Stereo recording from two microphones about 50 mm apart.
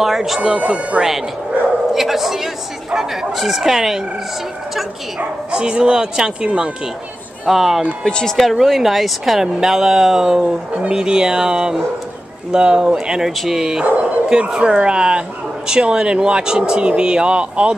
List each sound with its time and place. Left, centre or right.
0.0 s speech: centre
0.4 s speech: right
2.0 s a man's voice: centre
5.5 s speech: centre
7.4 s a man's voice: centre
8.0 s speech: centre
8.5 s speech: centre
13.3 s speech: centre